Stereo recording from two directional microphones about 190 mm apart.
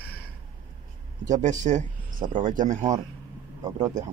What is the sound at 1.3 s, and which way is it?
Speech, 40° right (ahead or behind).